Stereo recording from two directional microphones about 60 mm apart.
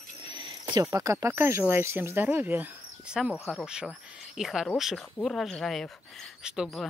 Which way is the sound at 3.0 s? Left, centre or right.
Centre.